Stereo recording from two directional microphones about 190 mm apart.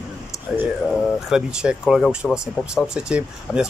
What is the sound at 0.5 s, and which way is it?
Speech, centre (ahead or behind).